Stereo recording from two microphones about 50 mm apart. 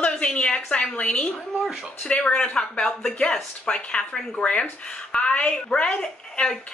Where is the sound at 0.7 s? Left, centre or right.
Left.